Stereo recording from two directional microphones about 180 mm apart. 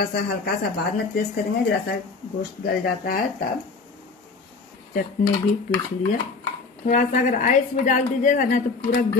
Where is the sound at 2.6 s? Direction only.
55° left (ahead or behind).